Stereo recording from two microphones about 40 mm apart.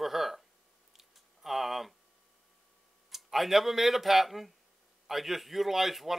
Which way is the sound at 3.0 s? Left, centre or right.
Centre.